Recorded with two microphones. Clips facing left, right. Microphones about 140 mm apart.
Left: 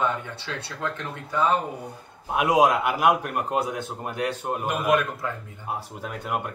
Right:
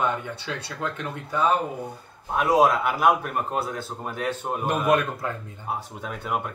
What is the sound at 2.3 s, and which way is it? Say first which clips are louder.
A man's voice: even; 15° left (ahead or behind).